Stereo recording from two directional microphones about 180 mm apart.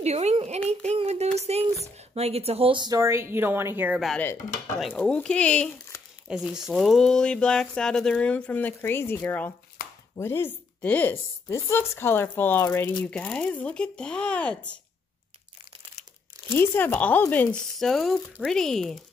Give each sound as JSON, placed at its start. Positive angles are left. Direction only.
{"t": 0.0, "sound": "speech", "side_deg": -35}
{"t": 0.7, "sound": "child singing", "side_deg": -35}
{"t": 1.4, "sound": "a sound", "side_deg": -35}
{"t": 2.1, "sound": "speech", "side_deg": -35}
{"t": 4.0, "sound": "a woman's voice", "side_deg": 0}
{"t": 6.2, "sound": "a woman's voice", "side_deg": -5}
{"t": 16.5, "sound": "speech", "side_deg": 10}